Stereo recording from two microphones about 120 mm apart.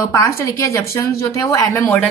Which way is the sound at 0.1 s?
25° left (ahead or behind).